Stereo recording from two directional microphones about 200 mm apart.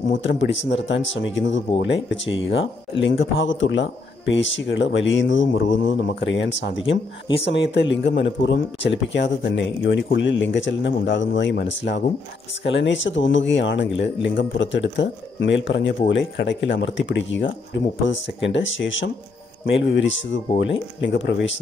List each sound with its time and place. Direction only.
0.2 s speech: 65° left (ahead or behind)